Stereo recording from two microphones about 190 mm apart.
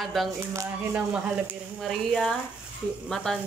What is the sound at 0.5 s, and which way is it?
Speech, 15° right (ahead or behind).